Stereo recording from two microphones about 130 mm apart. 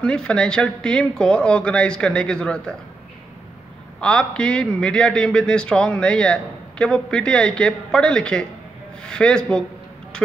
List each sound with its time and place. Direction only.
0.0 s a man's voice: 5° left (ahead or behind)
4.0 s a man's voice: 5° left (ahead or behind)